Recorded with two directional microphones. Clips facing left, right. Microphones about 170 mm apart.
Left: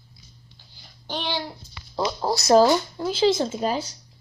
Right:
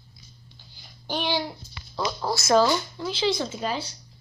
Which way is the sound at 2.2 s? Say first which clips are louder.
Left 4 dB; 35° left (ahead or behind).